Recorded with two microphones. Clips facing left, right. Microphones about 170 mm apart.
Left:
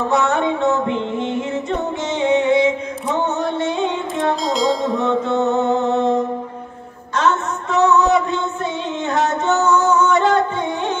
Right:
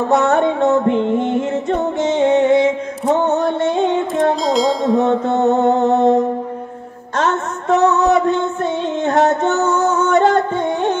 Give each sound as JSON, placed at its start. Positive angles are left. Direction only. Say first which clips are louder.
{"t": 0.1, "sound": "music", "louder": "right 5 dB", "side_deg": -50}
{"t": 4.5, "sound": "music", "louder": "right 3 dB", "side_deg": 0}
{"t": 5.0, "sound": "music", "louder": "right 2 dB", "side_deg": -50}
{"t": 5.9, "sound": "mantra", "louder": "right 4 dB", "side_deg": -50}
{"t": 7.2, "sound": "a sound", "louder": "even", "side_deg": -50}
{"t": 9.0, "sound": "music", "louder": "right 4 dB", "side_deg": -50}